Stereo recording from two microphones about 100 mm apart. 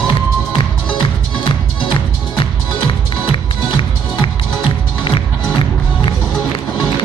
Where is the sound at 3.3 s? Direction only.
60° left (ahead or behind).